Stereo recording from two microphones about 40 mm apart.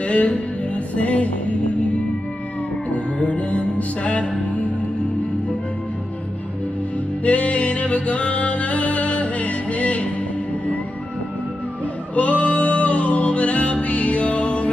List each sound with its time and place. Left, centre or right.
0.0 s music: left
2.9 s music: left
7.2 s music: left
12.2 s music: left